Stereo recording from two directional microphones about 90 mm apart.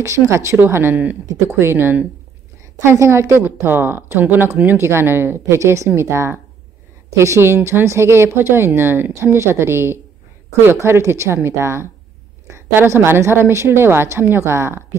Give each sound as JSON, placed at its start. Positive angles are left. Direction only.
{"t": 0.0, "sound": "a woman's voice", "side_deg": -35}